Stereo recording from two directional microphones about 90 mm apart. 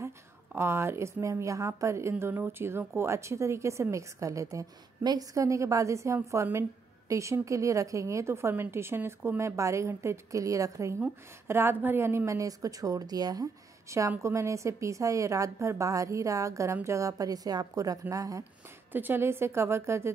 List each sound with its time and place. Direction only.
0.6 s a woman's voice: 30° right (ahead or behind)
18.9 s a woman's voice: 20° right (ahead or behind)